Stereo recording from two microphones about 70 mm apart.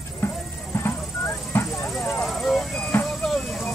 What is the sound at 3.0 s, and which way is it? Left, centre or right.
Vehicle, centre.